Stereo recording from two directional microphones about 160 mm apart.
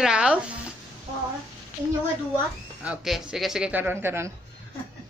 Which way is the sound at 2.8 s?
5° right (ahead or behind).